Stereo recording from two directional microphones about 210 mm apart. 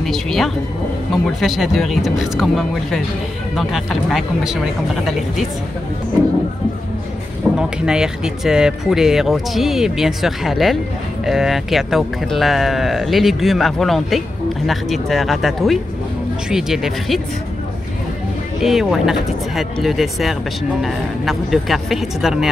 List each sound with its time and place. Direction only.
0.0 s speech: centre (ahead or behind)
7.5 s speech: 5° right (ahead or behind)
18.6 s speech: centre (ahead or behind)